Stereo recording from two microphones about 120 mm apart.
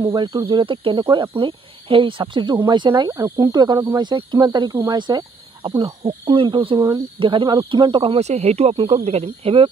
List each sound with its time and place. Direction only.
0.1 s speech: 40° right (ahead or behind)
8.2 s speech: 70° right (ahead or behind)